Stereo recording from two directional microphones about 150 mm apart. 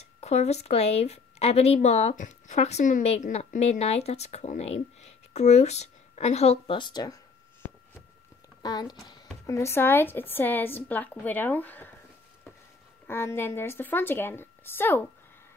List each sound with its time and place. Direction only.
0.0 s a woman's voice: 45° left (ahead or behind)
6.8 s speech: 25° left (ahead or behind)
8.6 s a woman's voice: 25° left (ahead or behind); by 11.9 s 10° left (ahead or behind)
13.0 s a woman's voice: 15° left (ahead or behind)